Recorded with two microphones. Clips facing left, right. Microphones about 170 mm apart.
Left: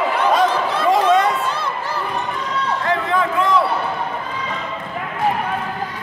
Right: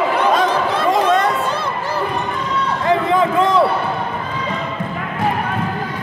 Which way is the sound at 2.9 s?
20° right (ahead or behind).